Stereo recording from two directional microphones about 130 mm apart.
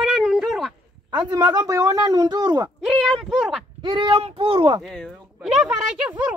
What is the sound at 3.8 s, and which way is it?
Speech, 35° right (ahead or behind).